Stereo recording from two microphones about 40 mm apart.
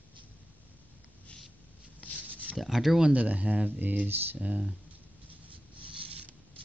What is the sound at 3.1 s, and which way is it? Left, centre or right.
Speech, right.